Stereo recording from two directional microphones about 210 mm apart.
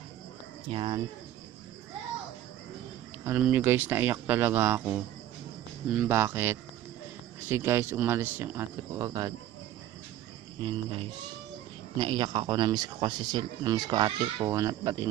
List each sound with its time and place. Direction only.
0.7 s speech: 25° right (ahead or behind)
3.3 s speech: 10° right (ahead or behind)
10.6 s speech: 25° right (ahead or behind)